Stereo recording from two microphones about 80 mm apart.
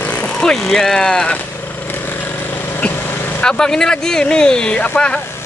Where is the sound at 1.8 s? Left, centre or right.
Left.